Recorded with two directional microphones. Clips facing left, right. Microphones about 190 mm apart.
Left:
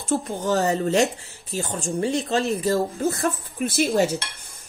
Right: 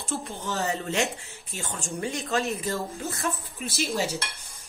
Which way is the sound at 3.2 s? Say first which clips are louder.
Left 7 dB; 55° left (ahead or behind).